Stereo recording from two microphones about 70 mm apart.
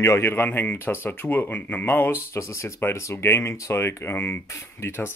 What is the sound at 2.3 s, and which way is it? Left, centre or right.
Speech, left.